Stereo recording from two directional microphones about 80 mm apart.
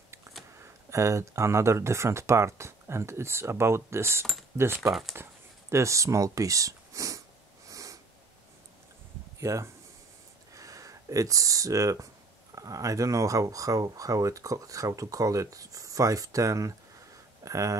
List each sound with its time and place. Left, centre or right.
0.6 s speech: right
5.1 s a sound: right
9.4 s speech: right